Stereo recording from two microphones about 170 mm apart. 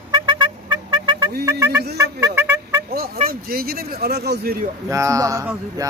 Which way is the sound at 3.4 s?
60° right (ahead or behind).